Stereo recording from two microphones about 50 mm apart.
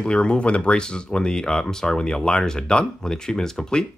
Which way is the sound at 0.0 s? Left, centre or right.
Centre.